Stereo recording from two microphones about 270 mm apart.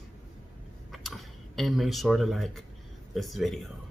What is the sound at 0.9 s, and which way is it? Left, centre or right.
Speech, centre.